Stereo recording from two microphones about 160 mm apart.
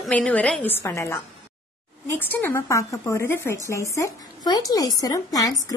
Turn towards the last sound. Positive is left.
turn(degrees=20)  # may be behind; listen again after turning